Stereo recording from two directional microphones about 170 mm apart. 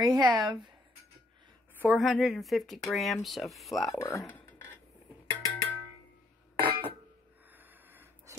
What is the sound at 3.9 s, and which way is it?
Speech, 20° left (ahead or behind).